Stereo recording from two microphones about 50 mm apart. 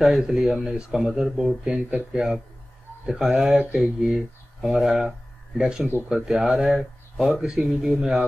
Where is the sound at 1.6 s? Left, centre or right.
Centre.